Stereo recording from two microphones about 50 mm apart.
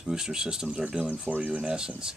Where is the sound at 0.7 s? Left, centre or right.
Right.